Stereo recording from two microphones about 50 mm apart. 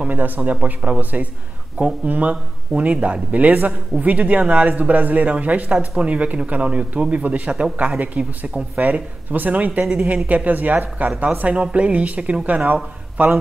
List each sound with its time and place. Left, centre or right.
0.1 s a man's voice: right